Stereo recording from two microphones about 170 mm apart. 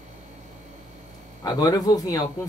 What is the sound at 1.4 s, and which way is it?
Speech, 20° left (ahead or behind).